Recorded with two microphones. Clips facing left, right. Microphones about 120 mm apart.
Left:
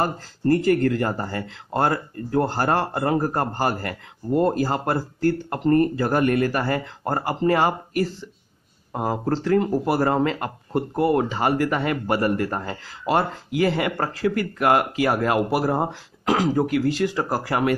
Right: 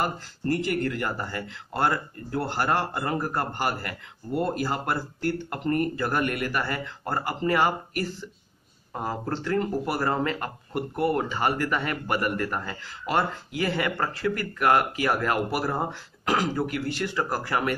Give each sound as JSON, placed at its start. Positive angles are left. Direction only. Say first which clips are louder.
{"t": 0.0, "sound": "speech", "louder": "left 5 dB", "side_deg": 40}
{"t": 8.9, "sound": "speech", "louder": "left 6 dB", "side_deg": 20}
{"t": 9.2, "sound": "speech", "louder": "left 6 dB", "side_deg": 35}